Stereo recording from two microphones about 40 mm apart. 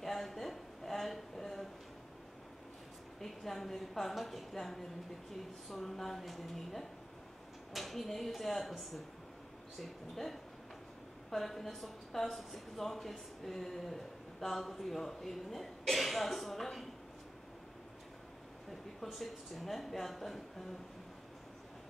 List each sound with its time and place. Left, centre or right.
0.0 s a sound: centre
3.2 s a woman's voice: centre
19.0 s a woman's voice: centre